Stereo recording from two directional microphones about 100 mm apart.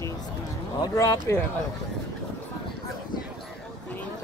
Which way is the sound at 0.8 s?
35° left (ahead or behind).